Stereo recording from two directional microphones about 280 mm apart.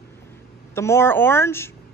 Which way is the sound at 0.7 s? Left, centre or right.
Centre.